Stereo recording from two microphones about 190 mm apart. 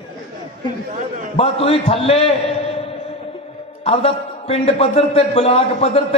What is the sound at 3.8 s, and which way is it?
A man's voice, 35° left (ahead or behind).